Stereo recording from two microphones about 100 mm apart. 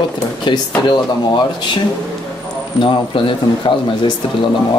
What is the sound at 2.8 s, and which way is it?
Speech, 55° left (ahead or behind).